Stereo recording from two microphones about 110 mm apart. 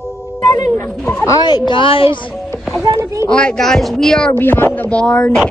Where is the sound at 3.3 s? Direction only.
10° left (ahead or behind).